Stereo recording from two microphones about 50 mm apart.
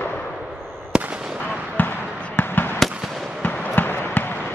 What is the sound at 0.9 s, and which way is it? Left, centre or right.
Fireworks, centre.